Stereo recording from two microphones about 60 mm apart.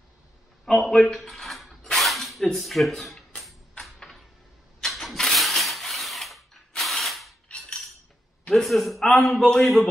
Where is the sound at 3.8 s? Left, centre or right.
Centre.